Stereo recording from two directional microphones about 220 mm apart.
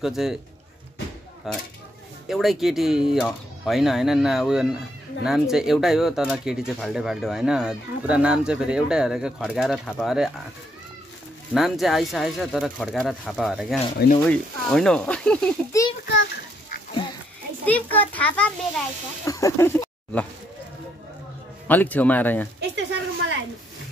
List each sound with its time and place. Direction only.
0.0 s speech: centre (ahead or behind)
1.5 s speech: centre (ahead or behind)
11.5 s a child's voice: centre (ahead or behind)
17.6 s a child's voice: 5° left (ahead or behind)
21.6 s a child's voice: 10° left (ahead or behind)
22.6 s a sound: 55° right (ahead or behind)